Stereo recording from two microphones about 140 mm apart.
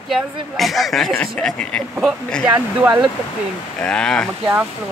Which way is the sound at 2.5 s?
15° right (ahead or behind).